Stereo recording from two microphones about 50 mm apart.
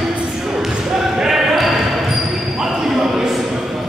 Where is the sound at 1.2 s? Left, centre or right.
Centre.